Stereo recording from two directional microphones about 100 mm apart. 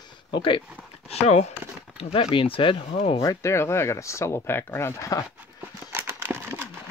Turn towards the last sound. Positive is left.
turn(degrees=-20)  # may be behind; listen again after turning